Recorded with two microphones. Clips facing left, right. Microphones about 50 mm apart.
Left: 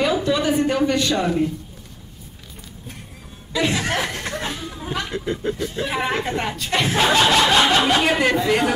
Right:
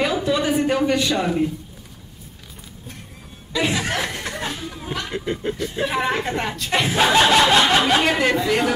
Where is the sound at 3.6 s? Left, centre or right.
Centre.